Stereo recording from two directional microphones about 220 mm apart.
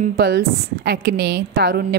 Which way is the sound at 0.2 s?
50° right (ahead or behind).